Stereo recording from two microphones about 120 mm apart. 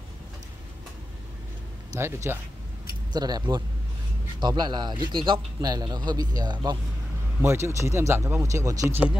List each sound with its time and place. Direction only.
2.0 s speech: 20° right (ahead or behind)
3.1 s a man's voice: 35° right (ahead or behind)
7.4 s speech: 25° right (ahead or behind)